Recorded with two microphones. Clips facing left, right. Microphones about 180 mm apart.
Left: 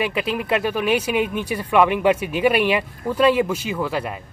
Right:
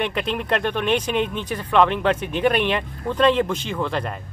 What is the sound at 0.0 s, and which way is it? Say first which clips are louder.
Speech: left 1 dB; 5° left (ahead or behind).